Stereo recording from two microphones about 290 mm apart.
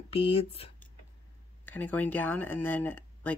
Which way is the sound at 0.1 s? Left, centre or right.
Centre.